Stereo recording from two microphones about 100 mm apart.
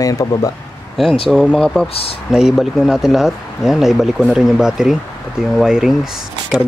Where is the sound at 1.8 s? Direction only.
75° left (ahead or behind).